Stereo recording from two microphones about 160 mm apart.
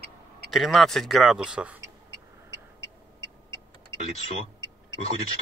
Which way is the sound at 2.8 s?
30° right (ahead or behind).